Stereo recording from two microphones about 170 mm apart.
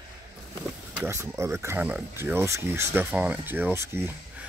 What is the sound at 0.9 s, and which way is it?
Speech, 15° right (ahead or behind).